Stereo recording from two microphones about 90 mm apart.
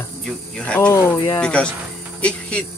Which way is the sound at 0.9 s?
30° left (ahead or behind).